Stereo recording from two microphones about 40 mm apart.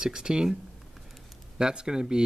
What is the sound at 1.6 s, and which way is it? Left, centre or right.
Speech, right.